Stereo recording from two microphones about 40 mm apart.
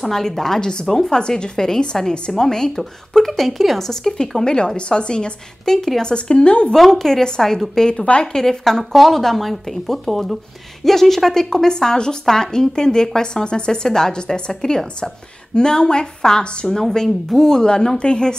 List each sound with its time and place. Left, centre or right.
0.0 s speech: centre
2.8 s speech: centre; by 6.7 s left
6.7 s speech: centre; by 8.4 s left
8.4 s speech: centre